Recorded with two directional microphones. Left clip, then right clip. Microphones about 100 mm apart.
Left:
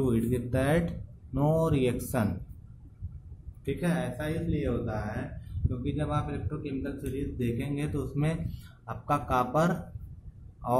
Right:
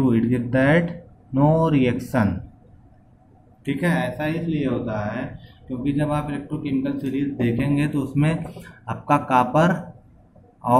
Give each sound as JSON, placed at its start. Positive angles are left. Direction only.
{"t": 0.0, "sound": "speech", "side_deg": 30}
{"t": 3.6, "sound": "a man's voice", "side_deg": 20}
{"t": 4.2, "sound": "speech", "side_deg": 0}
{"t": 5.9, "sound": "a man's voice", "side_deg": 10}